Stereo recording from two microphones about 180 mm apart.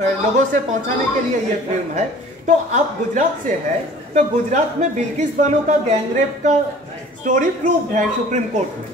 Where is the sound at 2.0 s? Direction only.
40° right (ahead or behind).